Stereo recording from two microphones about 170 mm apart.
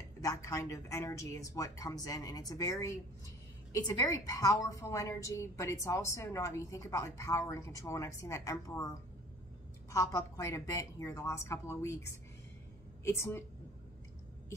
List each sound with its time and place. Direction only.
0.2 s a woman's voice: 20° left (ahead or behind)